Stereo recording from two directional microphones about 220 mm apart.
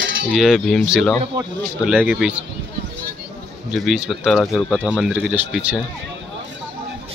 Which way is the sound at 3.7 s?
Centre (ahead or behind).